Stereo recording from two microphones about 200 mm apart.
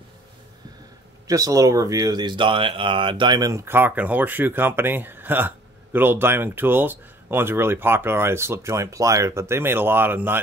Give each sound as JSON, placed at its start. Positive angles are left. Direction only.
{"t": 1.2, "sound": "speech", "side_deg": -15}